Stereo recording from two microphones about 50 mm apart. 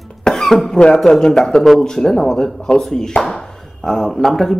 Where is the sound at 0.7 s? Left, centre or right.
Centre.